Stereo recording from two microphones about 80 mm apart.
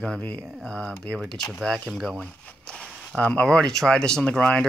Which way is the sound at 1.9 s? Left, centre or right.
Centre.